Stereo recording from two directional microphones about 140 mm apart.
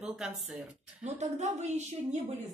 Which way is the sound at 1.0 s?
55° right (ahead or behind).